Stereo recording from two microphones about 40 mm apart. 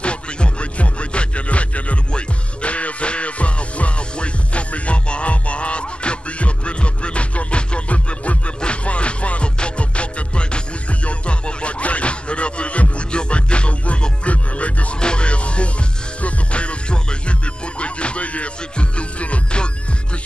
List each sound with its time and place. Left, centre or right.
0.0 s music: left
15.0 s music: left